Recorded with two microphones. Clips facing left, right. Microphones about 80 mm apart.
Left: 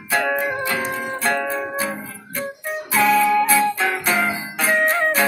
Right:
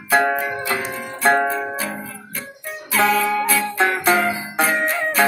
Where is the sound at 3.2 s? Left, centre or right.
Centre.